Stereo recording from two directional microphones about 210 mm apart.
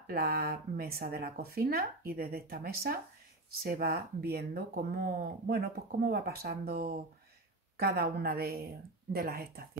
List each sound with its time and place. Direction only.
0.0 s speech: 45° right (ahead or behind)